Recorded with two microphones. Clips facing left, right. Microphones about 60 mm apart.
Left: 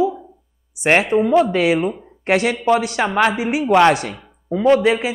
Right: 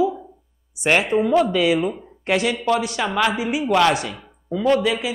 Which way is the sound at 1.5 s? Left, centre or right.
Left.